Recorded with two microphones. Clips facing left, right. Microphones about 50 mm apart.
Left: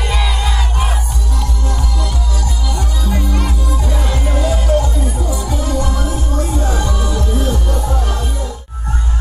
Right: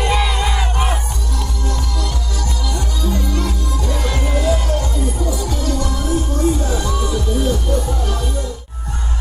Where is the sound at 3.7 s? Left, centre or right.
Centre.